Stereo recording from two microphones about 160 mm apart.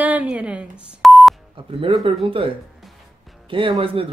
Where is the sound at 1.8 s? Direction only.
35° right (ahead or behind).